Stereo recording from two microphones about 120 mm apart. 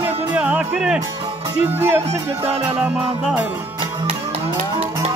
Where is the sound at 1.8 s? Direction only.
20° right (ahead or behind).